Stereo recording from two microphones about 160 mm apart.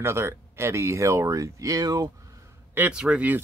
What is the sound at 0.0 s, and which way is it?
Speech, 15° right (ahead or behind).